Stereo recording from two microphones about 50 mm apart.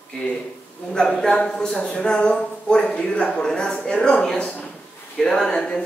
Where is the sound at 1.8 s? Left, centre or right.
Left.